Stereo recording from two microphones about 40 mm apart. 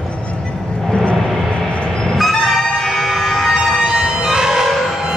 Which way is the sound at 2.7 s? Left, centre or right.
Centre.